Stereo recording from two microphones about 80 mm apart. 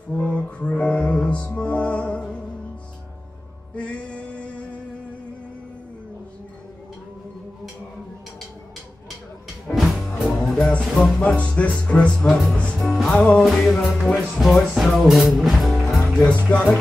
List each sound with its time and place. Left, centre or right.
0.2 s music: centre
3.7 s music: centre
9.7 s music: centre
10.8 s speech: centre
12.7 s music: centre
16.0 s music: centre